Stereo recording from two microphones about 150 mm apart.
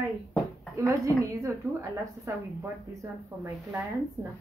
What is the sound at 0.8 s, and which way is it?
A woman's voice, 20° right (ahead or behind).